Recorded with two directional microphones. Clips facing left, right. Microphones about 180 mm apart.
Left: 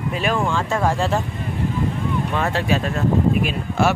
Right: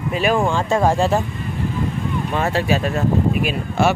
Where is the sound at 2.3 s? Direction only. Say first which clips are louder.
Right 3 dB; 5° right (ahead or behind).